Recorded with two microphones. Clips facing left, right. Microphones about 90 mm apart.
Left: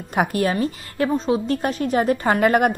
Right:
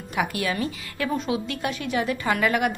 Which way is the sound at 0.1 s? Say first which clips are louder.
Left 6 dB; 40° left (ahead or behind).